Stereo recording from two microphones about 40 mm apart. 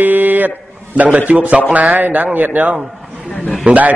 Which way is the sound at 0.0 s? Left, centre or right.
Right.